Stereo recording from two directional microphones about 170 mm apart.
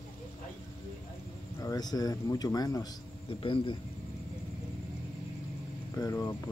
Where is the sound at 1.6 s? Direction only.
20° left (ahead or behind).